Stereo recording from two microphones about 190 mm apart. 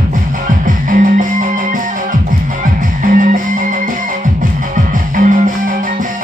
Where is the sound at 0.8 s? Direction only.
40° right (ahead or behind).